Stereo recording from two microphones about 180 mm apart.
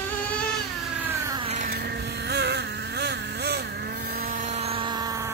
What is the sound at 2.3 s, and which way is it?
Vehicle, 70° right (ahead or behind).